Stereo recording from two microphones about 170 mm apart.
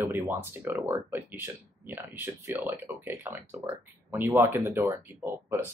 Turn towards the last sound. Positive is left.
turn(degrees=-15)  # may be behind; listen again after turning